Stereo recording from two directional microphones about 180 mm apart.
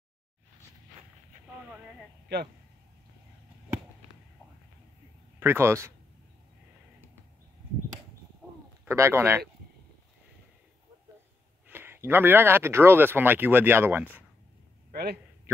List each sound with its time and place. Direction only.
1.6 s a sound: 5° right (ahead or behind)
5.4 s speech: 15° right (ahead or behind)
8.8 s speech: 15° right (ahead or behind)
11.6 s speech: 10° right (ahead or behind)
14.9 s a man's voice: 60° right (ahead or behind)